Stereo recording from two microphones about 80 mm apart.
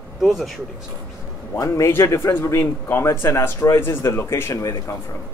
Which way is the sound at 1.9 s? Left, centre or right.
Left.